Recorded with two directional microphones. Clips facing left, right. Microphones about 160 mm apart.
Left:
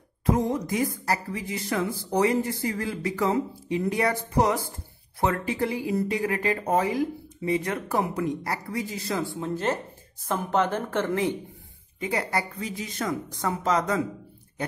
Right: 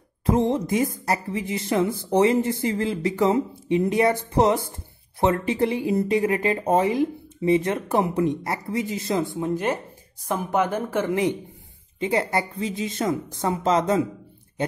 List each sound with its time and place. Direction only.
0.3 s a woman's voice: 25° right (ahead or behind)